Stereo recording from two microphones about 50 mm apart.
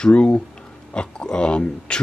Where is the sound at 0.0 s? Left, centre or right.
Centre.